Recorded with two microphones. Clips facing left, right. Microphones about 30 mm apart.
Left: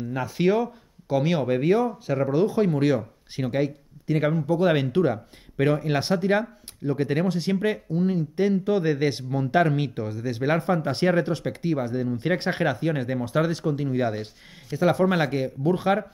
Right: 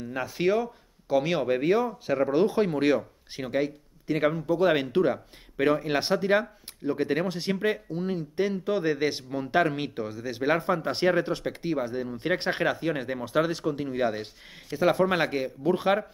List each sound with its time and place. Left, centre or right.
0.0 s speech: centre
2.3 s speech: centre
3.3 s speech: centre